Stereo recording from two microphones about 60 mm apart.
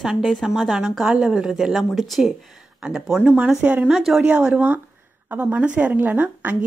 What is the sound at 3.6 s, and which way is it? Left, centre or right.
Speech, right.